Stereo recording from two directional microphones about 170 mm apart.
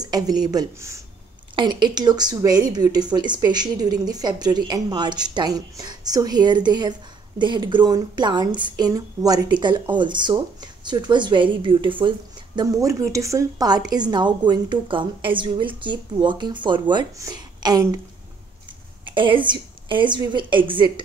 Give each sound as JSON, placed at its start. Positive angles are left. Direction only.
{"t": 0.0, "sound": "speech", "side_deg": -25}
{"t": 1.5, "sound": "speech", "side_deg": -30}
{"t": 19.0, "sound": "speech", "side_deg": -30}